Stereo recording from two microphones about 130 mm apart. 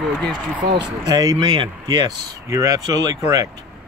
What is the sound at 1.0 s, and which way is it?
Speech, 30° right (ahead or behind).